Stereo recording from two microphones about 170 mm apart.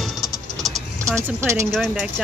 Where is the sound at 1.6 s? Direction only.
5° left (ahead or behind).